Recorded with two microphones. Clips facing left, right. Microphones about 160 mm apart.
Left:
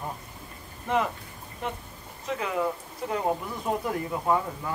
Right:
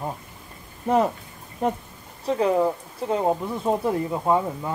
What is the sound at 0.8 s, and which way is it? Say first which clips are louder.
Speech: right 6 dB; 40° right (ahead or behind).